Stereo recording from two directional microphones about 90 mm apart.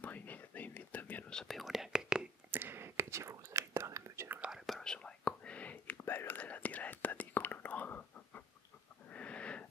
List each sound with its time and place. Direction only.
0.0 s whispering: 20° left (ahead or behind)
1.3 s whispering: 5° left (ahead or behind)
2.5 s whispering: 25° right (ahead or behind)
4.5 s whispering: 5° left (ahead or behind)
9.1 s wheeze: 15° left (ahead or behind)